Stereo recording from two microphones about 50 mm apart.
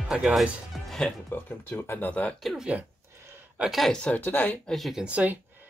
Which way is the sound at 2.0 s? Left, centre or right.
Left.